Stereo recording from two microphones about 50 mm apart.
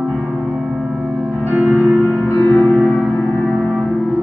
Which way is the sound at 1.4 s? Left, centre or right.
Right.